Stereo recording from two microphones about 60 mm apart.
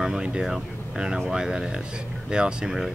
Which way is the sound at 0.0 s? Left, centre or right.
Centre.